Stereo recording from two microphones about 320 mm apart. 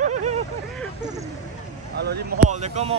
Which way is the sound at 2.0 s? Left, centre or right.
Right.